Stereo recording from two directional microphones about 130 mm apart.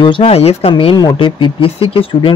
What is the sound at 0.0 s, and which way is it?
Speech, 45° left (ahead or behind).